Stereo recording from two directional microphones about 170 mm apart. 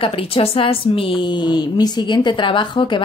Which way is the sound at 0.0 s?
35° left (ahead or behind).